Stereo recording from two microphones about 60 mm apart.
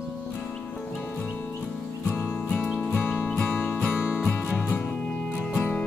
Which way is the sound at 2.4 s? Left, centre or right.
Centre.